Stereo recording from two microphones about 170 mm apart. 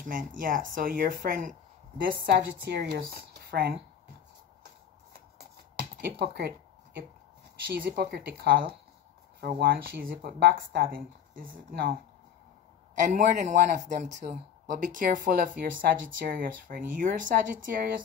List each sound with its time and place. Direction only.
0.0 s speech: 55° right (ahead or behind)
2.0 s speech: 80° right
5.9 s a sound: 75° right (ahead or behind)
7.7 s speech: 70° right (ahead or behind)
13.0 s a man's voice: 50° right (ahead or behind)